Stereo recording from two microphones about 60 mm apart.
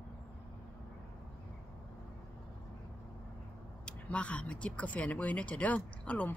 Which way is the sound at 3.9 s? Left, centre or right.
Centre.